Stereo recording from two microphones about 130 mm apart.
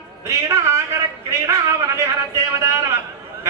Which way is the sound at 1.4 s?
25° right (ahead or behind).